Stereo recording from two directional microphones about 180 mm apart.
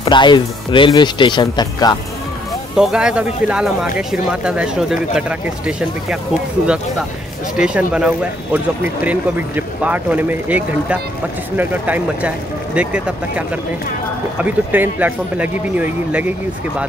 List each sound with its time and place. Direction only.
0.0 s speech: 25° left (ahead or behind)
2.7 s speech: 5° right (ahead or behind)
7.5 s speech: 5° right (ahead or behind)
14.4 s speech: 10° right (ahead or behind)